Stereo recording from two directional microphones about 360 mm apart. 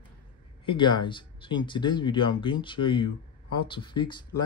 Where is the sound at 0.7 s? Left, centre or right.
Centre.